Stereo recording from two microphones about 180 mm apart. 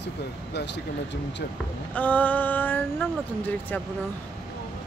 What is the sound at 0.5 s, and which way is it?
Speech, 75° left (ahead or behind).